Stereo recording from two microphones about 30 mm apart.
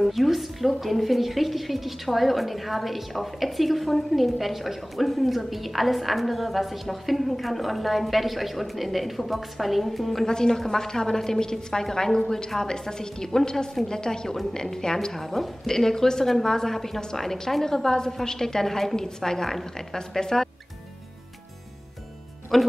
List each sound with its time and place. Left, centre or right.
0.0 s a woman's voice: centre
10.2 s a woman's voice: left
15.2 s a woman's voice: centre
22.5 s a woman's voice: centre